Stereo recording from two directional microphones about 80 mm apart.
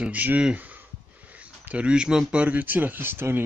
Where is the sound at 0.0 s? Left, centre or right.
Centre.